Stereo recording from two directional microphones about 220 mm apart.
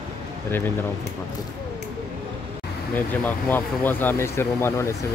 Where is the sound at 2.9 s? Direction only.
10° left (ahead or behind).